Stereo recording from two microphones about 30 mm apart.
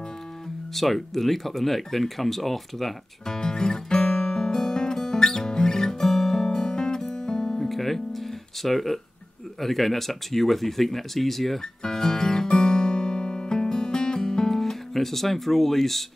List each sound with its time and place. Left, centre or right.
0.7 s speech: centre
3.3 s music: left
7.7 s guitar: centre
9.6 s speech: centre
11.8 s guitar: left
14.5 s speech: centre